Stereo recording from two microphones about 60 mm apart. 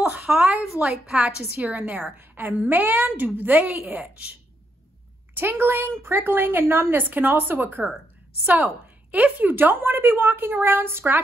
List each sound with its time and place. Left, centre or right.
0.0 s a sound: right
0.8 s a woman's voice: centre
1.5 s a woman's voice: right
5.3 s a woman's voice: right